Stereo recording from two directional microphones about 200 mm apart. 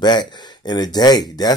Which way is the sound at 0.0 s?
20° left (ahead or behind).